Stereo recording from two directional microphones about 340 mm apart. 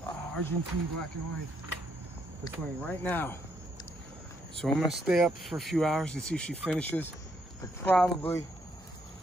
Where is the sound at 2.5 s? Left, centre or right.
Centre.